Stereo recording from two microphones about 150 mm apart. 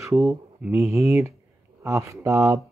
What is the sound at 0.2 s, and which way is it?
Speech, 5° right (ahead or behind).